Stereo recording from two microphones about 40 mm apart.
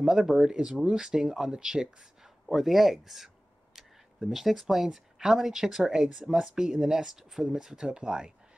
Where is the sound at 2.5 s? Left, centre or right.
Centre.